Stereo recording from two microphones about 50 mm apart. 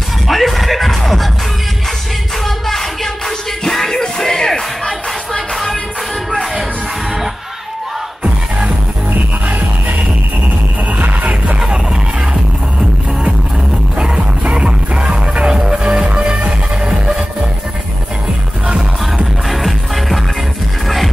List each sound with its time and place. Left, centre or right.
0.3 s music: centre
2.4 s music: centre
8.2 s music: centre
9.1 s music: right
11.6 s music: centre
13.9 s music: centre
18.7 s music: centre
19.5 s music: centre